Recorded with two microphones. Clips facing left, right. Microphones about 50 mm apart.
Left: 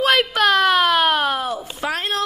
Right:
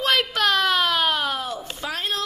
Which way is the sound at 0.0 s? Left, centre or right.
Centre.